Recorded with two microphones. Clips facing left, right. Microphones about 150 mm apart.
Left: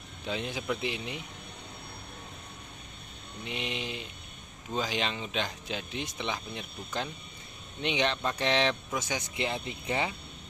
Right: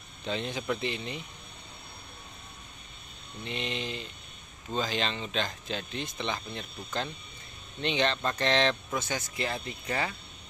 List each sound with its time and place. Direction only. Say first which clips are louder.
0.2 s speech: right 1 dB; 5° left (ahead or behind)
3.4 s speech: right 1 dB; 10° left (ahead or behind)